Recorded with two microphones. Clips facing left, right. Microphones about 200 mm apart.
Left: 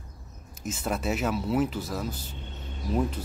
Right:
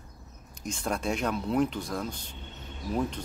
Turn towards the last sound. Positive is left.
turn(degrees=5)  # may be behind; listen again after turning